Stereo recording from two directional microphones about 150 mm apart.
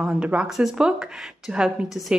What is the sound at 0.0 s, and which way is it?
Speech, 5° right (ahead or behind).